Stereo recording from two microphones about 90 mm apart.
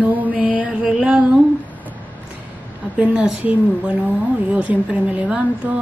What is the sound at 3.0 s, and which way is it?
Speech, 15° right (ahead or behind).